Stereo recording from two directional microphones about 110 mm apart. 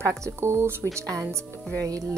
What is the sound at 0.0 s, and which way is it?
A woman's voice, 25° right (ahead or behind).